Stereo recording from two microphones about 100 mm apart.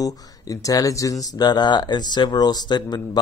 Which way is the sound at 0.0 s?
35° left (ahead or behind).